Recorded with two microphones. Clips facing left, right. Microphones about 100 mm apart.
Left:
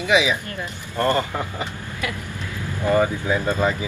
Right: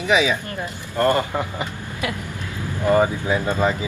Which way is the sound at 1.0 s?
20° right (ahead or behind).